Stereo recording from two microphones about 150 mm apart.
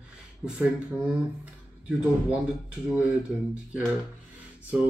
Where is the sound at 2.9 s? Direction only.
5° right (ahead or behind).